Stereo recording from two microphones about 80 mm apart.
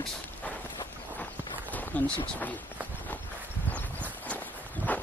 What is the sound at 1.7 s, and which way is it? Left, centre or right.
Speech, left.